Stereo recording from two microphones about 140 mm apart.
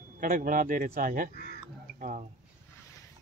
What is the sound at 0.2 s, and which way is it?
Speech, 75° right (ahead or behind).